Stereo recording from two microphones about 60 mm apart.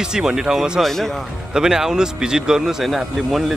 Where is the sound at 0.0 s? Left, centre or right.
Centre.